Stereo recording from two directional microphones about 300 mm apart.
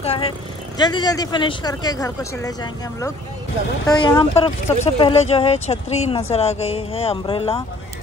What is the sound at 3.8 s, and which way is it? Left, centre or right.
Speech, centre.